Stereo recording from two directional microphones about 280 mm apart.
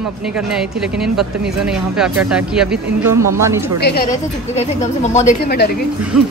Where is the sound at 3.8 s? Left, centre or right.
Left.